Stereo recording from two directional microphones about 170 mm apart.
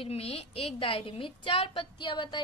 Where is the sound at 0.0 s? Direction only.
35° left (ahead or behind).